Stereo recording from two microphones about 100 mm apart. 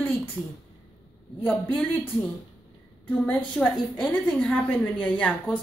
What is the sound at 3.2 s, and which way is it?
A woman's voice, 15° left (ahead or behind).